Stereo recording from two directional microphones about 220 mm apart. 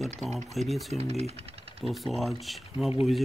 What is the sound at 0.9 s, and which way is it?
Speech, 30° right (ahead or behind).